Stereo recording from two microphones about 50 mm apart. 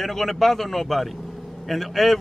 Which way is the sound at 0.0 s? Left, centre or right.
Centre.